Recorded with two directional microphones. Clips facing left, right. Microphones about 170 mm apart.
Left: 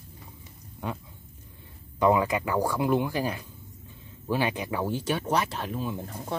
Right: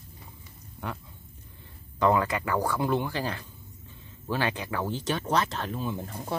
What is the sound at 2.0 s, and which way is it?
Speech, 15° left (ahead or behind).